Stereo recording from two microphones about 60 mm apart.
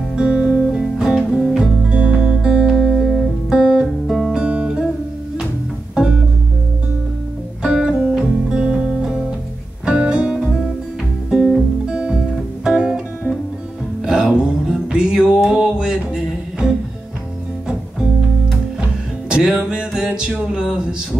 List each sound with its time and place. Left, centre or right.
0.1 s music: centre
3.4 s music: centre
4.1 s music: centre
4.4 s music: centre
7.6 s music: centre
19.2 s music: centre